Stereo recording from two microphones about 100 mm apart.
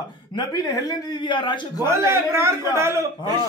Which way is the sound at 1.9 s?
30° right (ahead or behind).